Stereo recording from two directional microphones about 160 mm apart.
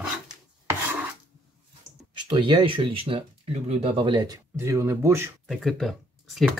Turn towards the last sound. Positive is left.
turn(degrees=0)  # may be behind; listen again after turning